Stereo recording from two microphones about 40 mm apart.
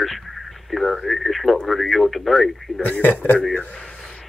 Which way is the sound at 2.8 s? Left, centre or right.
Left.